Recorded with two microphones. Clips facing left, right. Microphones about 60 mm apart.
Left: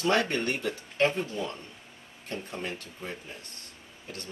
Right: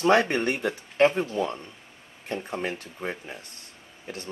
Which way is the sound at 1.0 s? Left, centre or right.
Right.